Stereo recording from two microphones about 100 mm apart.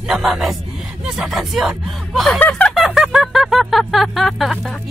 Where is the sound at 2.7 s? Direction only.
5° right (ahead or behind).